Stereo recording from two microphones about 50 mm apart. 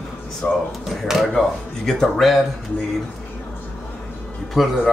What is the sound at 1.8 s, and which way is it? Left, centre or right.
Speech, centre.